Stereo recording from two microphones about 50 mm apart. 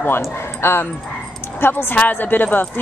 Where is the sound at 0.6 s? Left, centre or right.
Left.